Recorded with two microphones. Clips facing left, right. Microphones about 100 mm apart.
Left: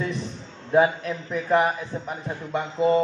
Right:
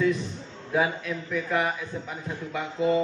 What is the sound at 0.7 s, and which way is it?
A man's voice, 35° left (ahead or behind).